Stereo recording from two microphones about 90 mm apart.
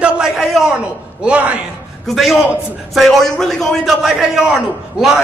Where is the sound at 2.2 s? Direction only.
Centre (ahead or behind).